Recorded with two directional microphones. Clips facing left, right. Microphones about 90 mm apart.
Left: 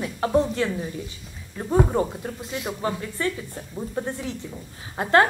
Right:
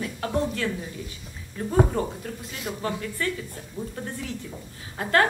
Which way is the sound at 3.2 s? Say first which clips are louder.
Left 3 dB; 25° left (ahead or behind).